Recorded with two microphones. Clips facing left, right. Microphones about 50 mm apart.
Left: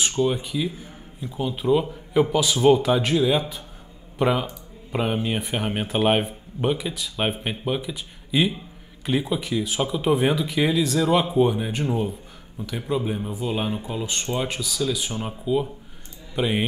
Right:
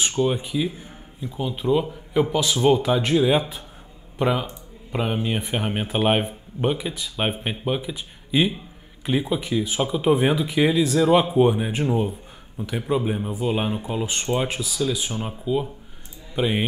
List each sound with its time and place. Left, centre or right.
0.1 s speech: centre
3.2 s speech: centre
4.2 s speech: centre